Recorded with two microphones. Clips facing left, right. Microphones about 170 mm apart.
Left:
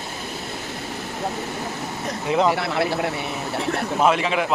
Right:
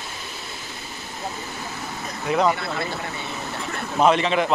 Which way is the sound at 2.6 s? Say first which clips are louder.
Left 6 dB; 70° left (ahead or behind).